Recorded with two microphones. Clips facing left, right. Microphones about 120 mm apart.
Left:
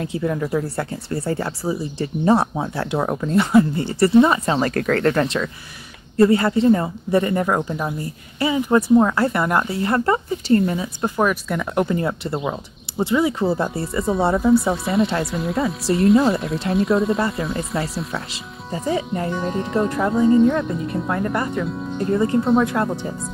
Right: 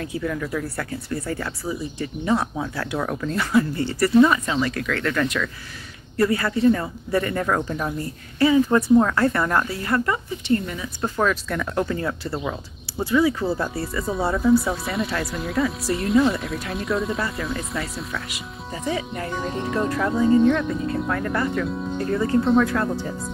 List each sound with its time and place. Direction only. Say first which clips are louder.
0.0 s speech: left 4 dB; 25° left (ahead or behind)
4.6 s speech: left 5 dB; 45° left (ahead or behind); by 11.1 s 30° left (ahead or behind)
11.1 s speech: left 2 dB; 15° left (ahead or behind)
14.4 s speech: left 2 dB; centre (ahead or behind)
18.3 s speech: left 3 dB; 30° left (ahead or behind)